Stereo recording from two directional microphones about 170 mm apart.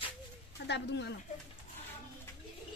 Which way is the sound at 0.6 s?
90° left.